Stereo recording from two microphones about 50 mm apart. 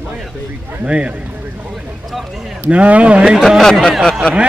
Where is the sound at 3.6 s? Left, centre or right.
Centre.